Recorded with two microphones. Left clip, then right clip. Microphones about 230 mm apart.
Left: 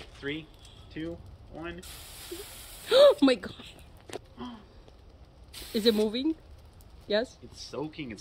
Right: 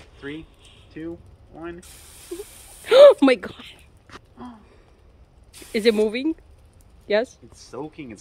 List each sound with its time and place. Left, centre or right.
0.0 s a sound: centre
1.0 s speech: centre
5.5 s speech: centre
7.7 s speech: centre